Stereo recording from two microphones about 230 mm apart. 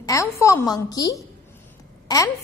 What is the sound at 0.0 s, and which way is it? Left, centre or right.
A woman's voice, centre.